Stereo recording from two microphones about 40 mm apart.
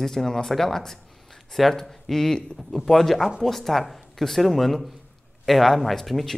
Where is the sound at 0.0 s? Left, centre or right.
Centre.